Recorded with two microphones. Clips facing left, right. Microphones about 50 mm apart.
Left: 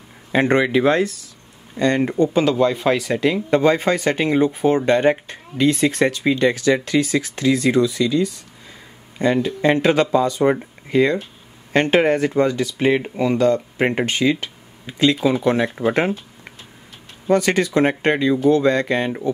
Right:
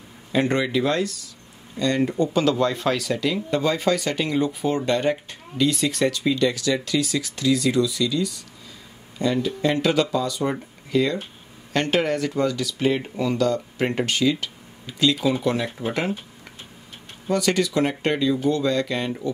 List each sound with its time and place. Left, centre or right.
0.3 s speech: left; by 3.1 s centre
3.1 s speech: left
17.3 s speech: left